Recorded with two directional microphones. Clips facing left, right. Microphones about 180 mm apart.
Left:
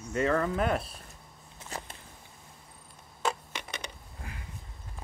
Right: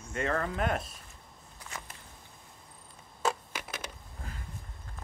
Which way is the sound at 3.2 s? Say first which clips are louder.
Right 1 dB; 5° right (ahead or behind).